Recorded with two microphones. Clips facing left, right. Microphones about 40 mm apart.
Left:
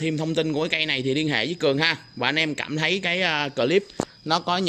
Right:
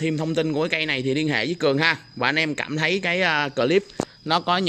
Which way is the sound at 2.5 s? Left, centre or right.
Right.